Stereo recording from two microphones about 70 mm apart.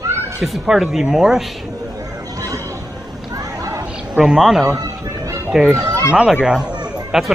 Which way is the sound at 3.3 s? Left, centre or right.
Right.